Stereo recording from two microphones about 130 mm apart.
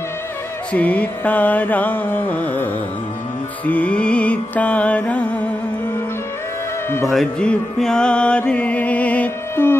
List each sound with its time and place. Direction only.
0.7 s music: 10° left (ahead or behind)
7.1 s music: 5° left (ahead or behind)